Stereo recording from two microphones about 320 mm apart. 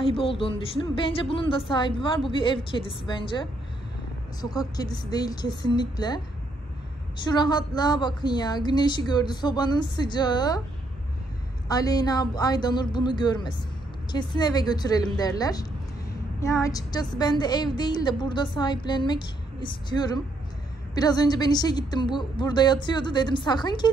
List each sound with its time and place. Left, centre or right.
0.0 s a woman's voice: centre
11.7 s a woman's voice: centre